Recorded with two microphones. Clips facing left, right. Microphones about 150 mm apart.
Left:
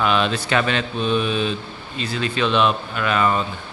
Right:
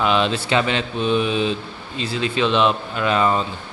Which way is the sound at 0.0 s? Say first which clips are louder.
Right 1 dB; 20° right (ahead or behind).